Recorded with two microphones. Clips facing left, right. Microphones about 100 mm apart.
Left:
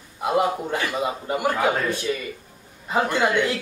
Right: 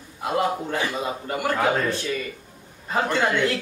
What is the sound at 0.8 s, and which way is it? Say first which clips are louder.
A man's voice: left 2 dB; 15° left (ahead or behind).